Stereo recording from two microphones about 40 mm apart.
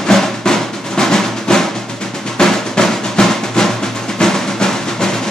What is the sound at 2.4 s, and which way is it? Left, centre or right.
Drum, centre.